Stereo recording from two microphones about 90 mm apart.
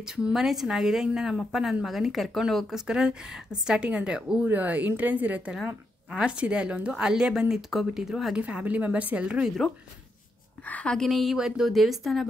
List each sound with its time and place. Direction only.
0.1 s a woman's voice: 5° right (ahead or behind)
10.7 s a woman's voice: 15° left (ahead or behind)
11.0 s speech: centre (ahead or behind)